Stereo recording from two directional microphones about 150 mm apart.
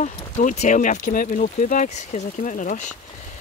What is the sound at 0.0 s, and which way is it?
Speech, 55° left (ahead or behind).